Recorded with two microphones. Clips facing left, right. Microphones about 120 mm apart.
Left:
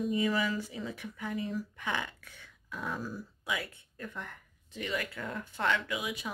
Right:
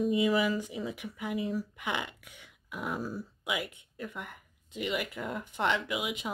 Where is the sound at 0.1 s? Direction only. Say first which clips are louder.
Right 3 dB; 15° right (ahead or behind).